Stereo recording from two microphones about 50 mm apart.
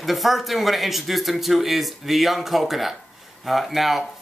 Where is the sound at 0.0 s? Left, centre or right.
Centre.